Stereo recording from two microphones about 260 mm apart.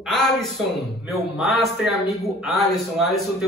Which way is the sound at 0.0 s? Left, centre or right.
Centre.